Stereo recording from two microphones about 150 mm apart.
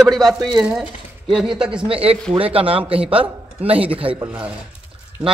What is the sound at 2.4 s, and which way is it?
Speech, 40° right (ahead or behind).